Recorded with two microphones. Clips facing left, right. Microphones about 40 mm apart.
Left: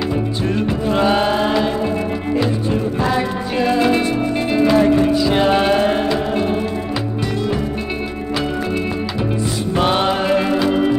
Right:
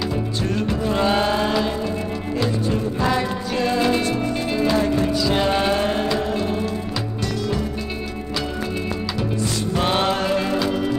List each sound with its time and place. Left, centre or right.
0.6 s music: centre
9.8 s music: centre